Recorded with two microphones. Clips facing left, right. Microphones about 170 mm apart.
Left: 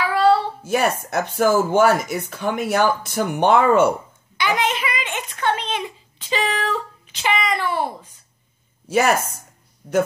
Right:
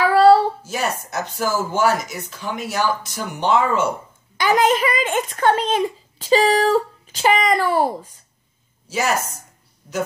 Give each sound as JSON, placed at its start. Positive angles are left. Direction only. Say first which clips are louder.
{"t": 0.1, "sound": "a sound", "louder": "right 4 dB", "side_deg": -40}
{"t": 0.7, "sound": "speech", "louder": "left 5 dB", "side_deg": 55}
{"t": 4.4, "sound": "speech", "louder": "right 5 dB", "side_deg": -40}
{"t": 8.8, "sound": "speech", "louder": "left 4 dB", "side_deg": 55}